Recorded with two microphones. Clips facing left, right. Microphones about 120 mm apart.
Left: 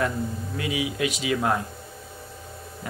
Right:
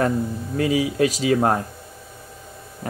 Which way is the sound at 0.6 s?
40° right (ahead or behind).